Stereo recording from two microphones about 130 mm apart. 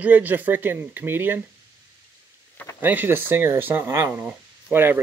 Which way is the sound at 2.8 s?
15° right (ahead or behind).